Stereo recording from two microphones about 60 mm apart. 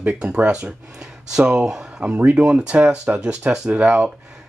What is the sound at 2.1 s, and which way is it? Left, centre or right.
Speech, right.